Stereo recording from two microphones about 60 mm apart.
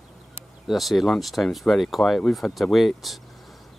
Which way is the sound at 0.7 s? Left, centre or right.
Centre.